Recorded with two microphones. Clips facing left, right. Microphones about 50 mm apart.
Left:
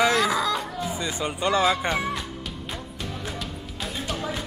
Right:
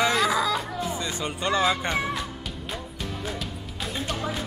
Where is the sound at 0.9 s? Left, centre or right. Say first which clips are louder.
Left 1 dB; centre.